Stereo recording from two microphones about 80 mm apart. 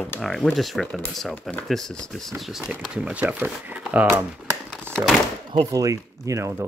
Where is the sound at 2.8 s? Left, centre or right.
Centre.